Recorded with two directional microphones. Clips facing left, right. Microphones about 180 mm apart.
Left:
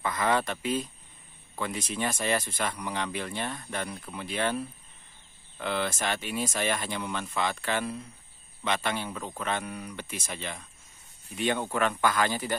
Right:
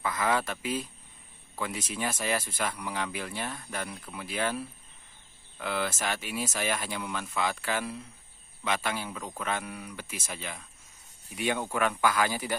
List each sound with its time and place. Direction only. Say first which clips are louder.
0.0 s speech: left 2 dB; 5° right (ahead or behind)